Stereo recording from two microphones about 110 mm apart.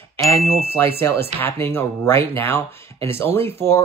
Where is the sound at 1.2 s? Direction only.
20° left (ahead or behind).